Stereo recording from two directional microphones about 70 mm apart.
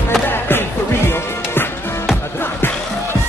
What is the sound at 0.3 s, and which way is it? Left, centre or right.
Music, left.